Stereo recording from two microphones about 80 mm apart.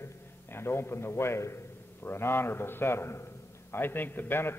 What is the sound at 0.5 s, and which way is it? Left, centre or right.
A man's voice, left.